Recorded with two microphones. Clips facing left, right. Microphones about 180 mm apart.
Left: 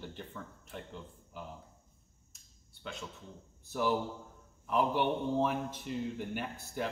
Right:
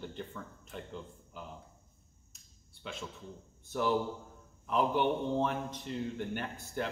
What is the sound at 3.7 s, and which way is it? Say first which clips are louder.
A man's voice: right 1 dB; 5° left (ahead or behind).